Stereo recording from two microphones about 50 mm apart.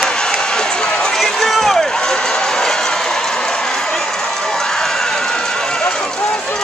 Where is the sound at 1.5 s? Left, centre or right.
Centre.